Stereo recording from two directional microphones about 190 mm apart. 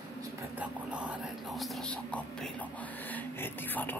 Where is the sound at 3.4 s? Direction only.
10° left (ahead or behind).